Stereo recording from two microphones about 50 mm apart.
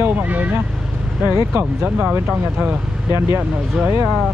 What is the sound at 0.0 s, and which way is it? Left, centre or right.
Vehicle, right.